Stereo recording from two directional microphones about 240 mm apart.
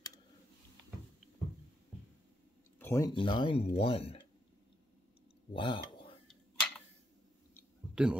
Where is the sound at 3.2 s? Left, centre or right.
Left.